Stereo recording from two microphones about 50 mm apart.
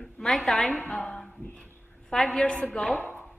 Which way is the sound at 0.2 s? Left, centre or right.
Centre.